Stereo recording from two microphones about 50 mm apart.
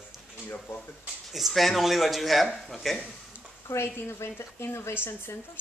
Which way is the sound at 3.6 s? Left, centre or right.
Left.